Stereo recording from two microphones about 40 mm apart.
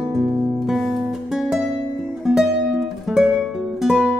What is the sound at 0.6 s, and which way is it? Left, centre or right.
Music, centre.